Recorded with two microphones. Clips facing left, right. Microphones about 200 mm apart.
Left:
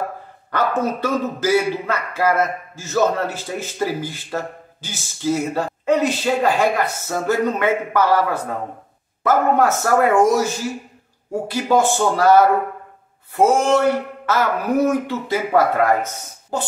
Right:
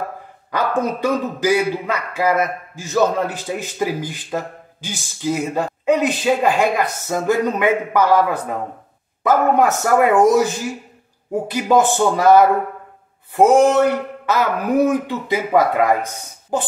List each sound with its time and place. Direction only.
0.5 s a man's voice: 15° right (ahead or behind)
13.4 s a man's voice: 15° right (ahead or behind)